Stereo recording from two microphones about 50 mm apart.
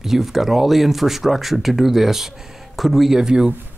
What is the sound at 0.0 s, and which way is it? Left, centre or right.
A man's voice, centre.